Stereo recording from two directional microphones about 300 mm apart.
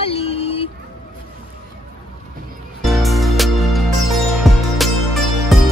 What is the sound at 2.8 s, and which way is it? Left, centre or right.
Music, centre.